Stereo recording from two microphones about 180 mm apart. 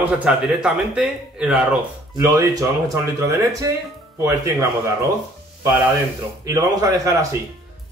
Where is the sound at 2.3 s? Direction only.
20° right (ahead or behind).